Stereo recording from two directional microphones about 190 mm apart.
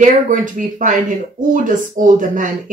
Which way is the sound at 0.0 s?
45° right (ahead or behind).